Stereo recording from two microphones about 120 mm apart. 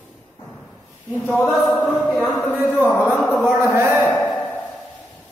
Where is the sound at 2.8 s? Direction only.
15° left (ahead or behind).